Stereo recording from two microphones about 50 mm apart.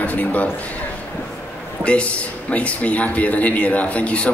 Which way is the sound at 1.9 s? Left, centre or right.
Left.